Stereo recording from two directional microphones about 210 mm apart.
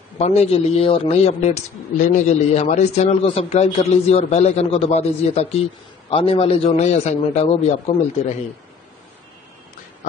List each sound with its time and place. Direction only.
0.2 s a man's voice: 30° left (ahead or behind)